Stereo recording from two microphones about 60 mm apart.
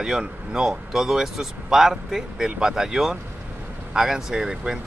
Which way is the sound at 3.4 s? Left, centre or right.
Right.